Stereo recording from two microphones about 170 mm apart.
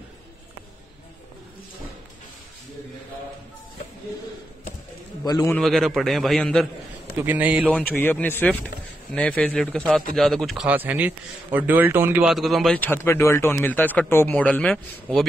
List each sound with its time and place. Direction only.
5.2 s a man's voice: 25° left (ahead or behind)
5.6 s speech: centre (ahead or behind)
7.2 s speech: 10° right (ahead or behind)
7.7 s a man's voice: 10° left (ahead or behind)